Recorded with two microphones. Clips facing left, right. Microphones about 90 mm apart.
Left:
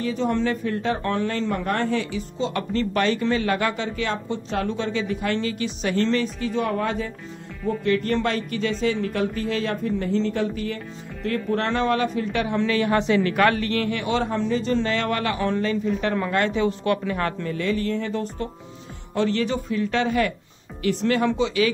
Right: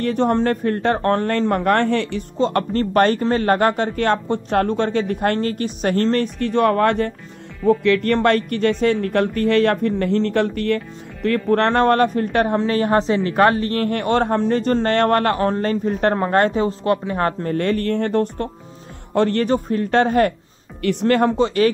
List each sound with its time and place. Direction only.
0.0 s speech: 55° right (ahead or behind)
12.5 s a man's voice: 40° right (ahead or behind)
17.6 s speech: 55° right (ahead or behind)